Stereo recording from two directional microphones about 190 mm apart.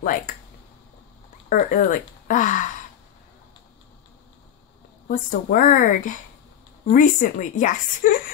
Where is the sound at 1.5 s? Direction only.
45° left (ahead or behind).